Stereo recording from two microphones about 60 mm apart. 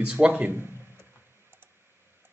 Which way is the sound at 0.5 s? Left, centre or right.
Right.